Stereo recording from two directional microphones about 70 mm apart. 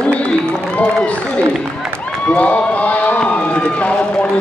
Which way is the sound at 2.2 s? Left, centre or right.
Left.